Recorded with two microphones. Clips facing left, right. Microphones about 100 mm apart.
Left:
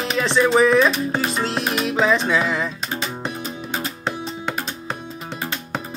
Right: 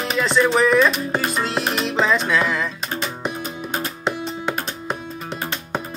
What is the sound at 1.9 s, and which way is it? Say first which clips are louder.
Music: left 1 dB; 5° left (ahead or behind).